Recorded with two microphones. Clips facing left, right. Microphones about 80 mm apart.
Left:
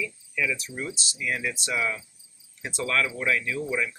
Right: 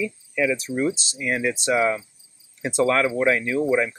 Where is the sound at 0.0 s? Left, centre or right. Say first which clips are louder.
Right 6 dB; right.